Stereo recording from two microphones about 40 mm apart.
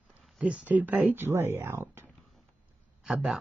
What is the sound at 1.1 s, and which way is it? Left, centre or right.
Speech, right.